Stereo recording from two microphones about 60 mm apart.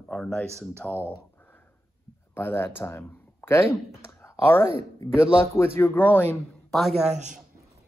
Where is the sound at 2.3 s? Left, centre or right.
Left.